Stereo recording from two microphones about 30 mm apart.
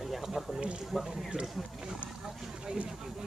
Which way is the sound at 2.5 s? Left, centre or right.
Right.